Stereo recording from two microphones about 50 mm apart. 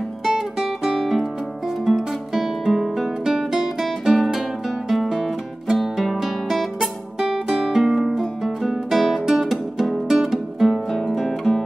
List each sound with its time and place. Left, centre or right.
0.2 s music: centre
1.9 s guitar: centre
5.7 s music: centre
7.2 s music: centre
9.2 s music: centre